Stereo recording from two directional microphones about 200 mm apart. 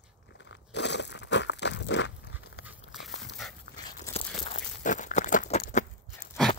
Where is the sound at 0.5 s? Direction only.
60° left (ahead or behind).